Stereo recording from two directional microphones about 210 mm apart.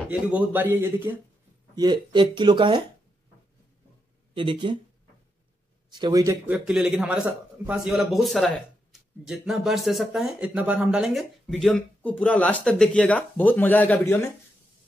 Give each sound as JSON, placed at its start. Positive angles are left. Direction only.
{"t": 0.1, "sound": "speech", "side_deg": -5}
{"t": 1.8, "sound": "speech", "side_deg": -20}
{"t": 4.4, "sound": "speech", "side_deg": -25}
{"t": 5.9, "sound": "a man's voice", "side_deg": -20}